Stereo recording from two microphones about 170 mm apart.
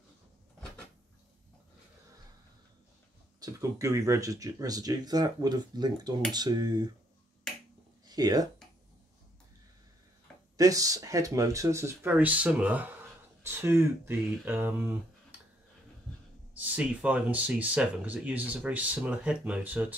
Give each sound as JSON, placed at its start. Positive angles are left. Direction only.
{"t": 3.3, "sound": "speech", "side_deg": -20}
{"t": 8.1, "sound": "speech", "side_deg": -20}
{"t": 10.6, "sound": "speech", "side_deg": -20}
{"t": 16.5, "sound": "speech", "side_deg": -10}